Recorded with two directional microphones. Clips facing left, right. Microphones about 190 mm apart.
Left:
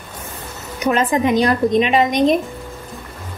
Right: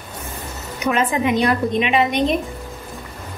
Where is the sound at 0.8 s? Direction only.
35° left (ahead or behind).